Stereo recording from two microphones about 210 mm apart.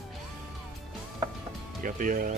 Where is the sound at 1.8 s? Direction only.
40° right (ahead or behind).